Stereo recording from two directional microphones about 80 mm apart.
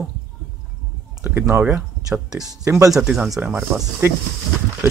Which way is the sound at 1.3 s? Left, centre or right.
Right.